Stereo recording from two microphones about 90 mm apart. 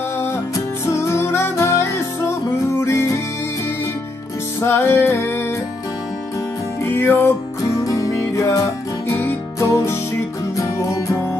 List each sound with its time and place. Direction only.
0.8 s music: 30° left (ahead or behind)
4.6 s music: 25° left (ahead or behind)
6.8 s music: 25° left (ahead or behind)
7.8 s music: 40° left (ahead or behind)
9.0 s music: 25° left (ahead or behind)
9.6 s music: 35° left (ahead or behind)